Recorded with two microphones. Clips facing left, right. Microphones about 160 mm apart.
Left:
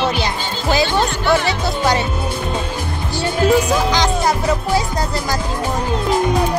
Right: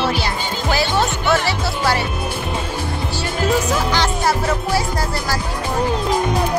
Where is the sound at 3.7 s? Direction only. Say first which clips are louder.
Left 2 dB; 15° left (ahead or behind).